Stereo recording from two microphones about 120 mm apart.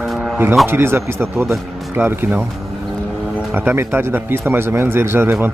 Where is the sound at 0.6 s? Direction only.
20° right (ahead or behind).